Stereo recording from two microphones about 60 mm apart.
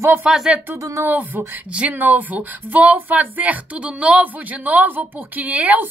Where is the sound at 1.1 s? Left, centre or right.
Right.